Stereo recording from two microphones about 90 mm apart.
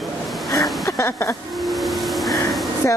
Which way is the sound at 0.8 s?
30° left (ahead or behind).